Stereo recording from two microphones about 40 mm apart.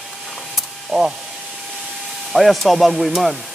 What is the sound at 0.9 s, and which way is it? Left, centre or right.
Speech, centre.